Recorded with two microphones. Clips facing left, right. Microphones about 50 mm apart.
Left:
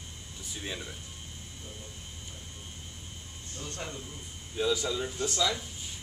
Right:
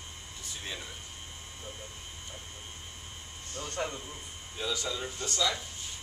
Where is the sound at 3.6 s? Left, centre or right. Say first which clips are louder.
Right 4 dB; right.